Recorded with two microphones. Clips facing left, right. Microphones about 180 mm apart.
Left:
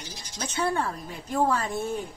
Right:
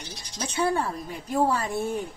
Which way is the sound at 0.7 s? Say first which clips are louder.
Right 2 dB; 10° right (ahead or behind).